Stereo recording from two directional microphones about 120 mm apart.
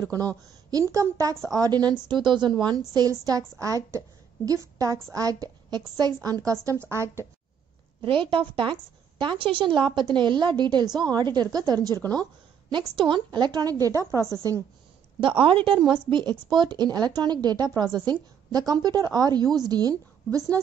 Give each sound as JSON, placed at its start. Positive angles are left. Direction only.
{"t": 0.0, "sound": "a woman's voice", "side_deg": -30}
{"t": 8.0, "sound": "a woman's voice", "side_deg": -45}
{"t": 15.4, "sound": "a woman's voice", "side_deg": -45}